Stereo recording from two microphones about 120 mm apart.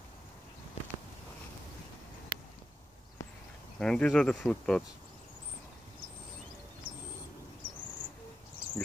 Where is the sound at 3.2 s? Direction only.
25° left (ahead or behind).